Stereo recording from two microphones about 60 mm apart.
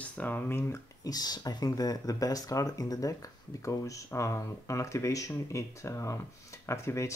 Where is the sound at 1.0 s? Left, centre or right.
Left.